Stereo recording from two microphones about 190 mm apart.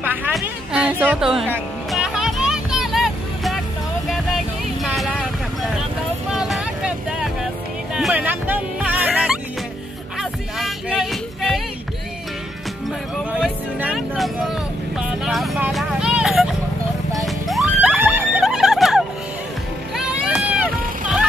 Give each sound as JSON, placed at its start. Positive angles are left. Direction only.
{"t": 0.0, "sound": "music", "side_deg": -10}
{"t": 4.8, "sound": "vehicle", "side_deg": 0}
{"t": 6.3, "sound": "vehicle", "side_deg": 0}
{"t": 7.9, "sound": "music", "side_deg": -5}
{"t": 10.6, "sound": "a sound", "side_deg": 0}
{"t": 13.4, "sound": "music", "side_deg": -5}
{"t": 15.2, "sound": "vehicle", "side_deg": 0}
{"t": 17.5, "sound": "a sound", "side_deg": 0}